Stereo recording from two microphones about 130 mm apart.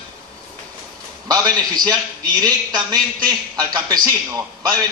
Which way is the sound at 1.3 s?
30° right (ahead or behind).